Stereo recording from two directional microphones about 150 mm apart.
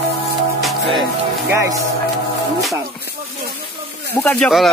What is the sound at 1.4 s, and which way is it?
Speech, 20° right (ahead or behind).